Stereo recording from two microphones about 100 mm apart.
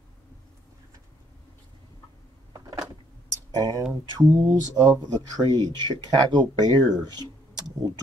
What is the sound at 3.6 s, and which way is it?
Speech, 40° right (ahead or behind).